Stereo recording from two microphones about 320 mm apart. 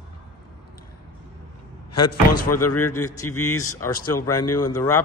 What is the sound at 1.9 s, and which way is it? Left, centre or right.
Speech, left.